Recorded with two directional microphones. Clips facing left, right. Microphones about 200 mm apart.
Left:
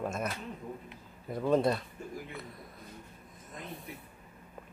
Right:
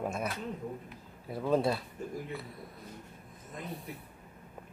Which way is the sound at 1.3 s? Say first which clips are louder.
Left 1 dB; 5° right (ahead or behind).